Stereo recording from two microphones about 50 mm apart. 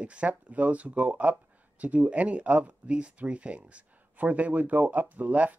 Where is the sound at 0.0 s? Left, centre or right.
Right.